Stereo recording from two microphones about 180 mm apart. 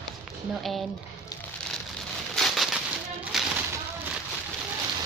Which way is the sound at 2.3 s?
Centre (ahead or behind).